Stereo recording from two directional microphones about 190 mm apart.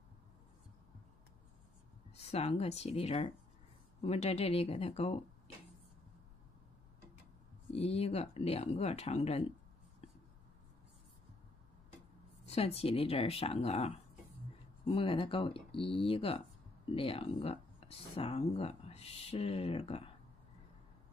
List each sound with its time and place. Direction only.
2.1 s speech: 35° left (ahead or behind)
7.7 s speech: 35° left (ahead or behind)
12.4 s speech: 30° left (ahead or behind)